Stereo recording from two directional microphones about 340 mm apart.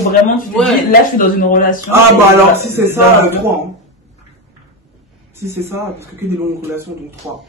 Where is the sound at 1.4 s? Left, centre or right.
Left.